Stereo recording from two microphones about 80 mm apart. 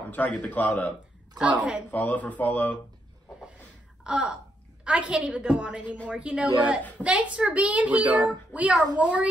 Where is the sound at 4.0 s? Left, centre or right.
Centre.